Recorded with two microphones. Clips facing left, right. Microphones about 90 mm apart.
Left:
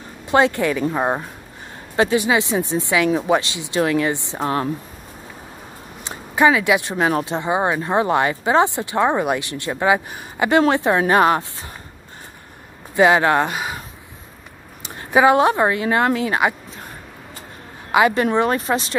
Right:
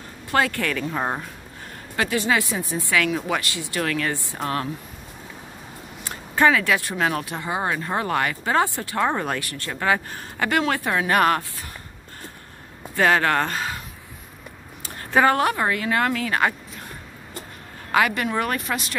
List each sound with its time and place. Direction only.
0.3 s speech: 20° left (ahead or behind)
6.0 s speech: 15° left (ahead or behind)
12.9 s speech: 15° left (ahead or behind)
14.8 s a woman's voice: 15° left (ahead or behind)
17.9 s speech: 25° left (ahead or behind)